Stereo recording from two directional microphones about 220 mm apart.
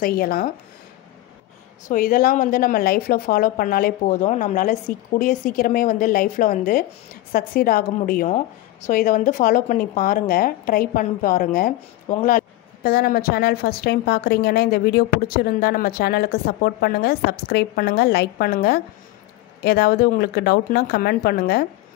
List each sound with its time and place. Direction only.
0.0 s speech: 40° left (ahead or behind)
1.9 s a woman's voice: 40° left (ahead or behind)